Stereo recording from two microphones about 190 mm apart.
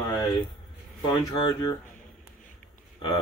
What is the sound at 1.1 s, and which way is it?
Speech, 20° left (ahead or behind).